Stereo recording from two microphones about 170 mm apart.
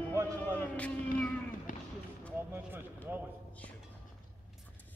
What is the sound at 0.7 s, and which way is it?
Cat, 10° left (ahead or behind).